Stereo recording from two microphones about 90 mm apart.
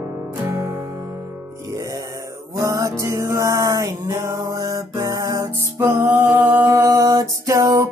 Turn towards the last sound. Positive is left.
turn(degrees=-35)  # may be behind; listen again after turning